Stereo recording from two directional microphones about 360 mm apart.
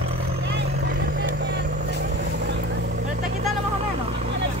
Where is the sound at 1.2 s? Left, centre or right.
Right.